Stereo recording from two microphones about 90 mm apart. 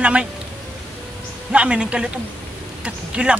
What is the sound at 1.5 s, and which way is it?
Speech, 10° right (ahead or behind).